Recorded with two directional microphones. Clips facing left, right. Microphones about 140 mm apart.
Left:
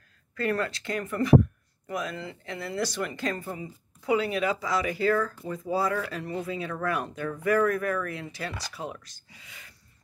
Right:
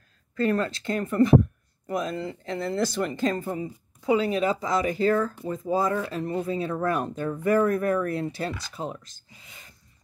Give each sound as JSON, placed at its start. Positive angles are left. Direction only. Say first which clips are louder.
{"t": 0.4, "sound": "speech", "louder": "right 4 dB", "side_deg": -25}
{"t": 6.2, "sound": "speech", "louder": "right 5 dB", "side_deg": -35}
{"t": 8.7, "sound": "speech", "louder": "right 3 dB", "side_deg": -25}